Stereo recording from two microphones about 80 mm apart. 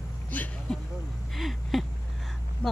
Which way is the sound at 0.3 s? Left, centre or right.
Centre.